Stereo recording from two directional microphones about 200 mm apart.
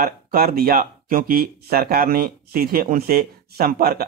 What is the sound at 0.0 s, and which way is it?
Speech, 50° right (ahead or behind).